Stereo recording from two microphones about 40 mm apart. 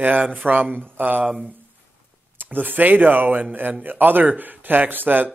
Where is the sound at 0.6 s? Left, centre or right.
Right.